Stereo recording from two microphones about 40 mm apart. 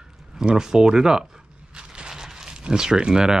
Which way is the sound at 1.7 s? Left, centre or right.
Right.